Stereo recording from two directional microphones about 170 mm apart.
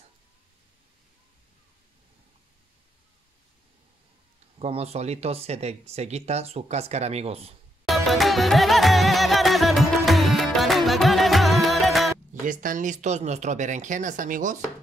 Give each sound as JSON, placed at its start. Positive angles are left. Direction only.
{"t": 4.6, "sound": "speech", "side_deg": -35}
{"t": 7.8, "sound": "music", "side_deg": 0}
{"t": 12.4, "sound": "speech", "side_deg": -50}